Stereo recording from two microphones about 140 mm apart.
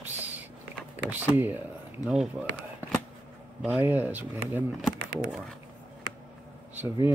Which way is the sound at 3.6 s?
15° right (ahead or behind).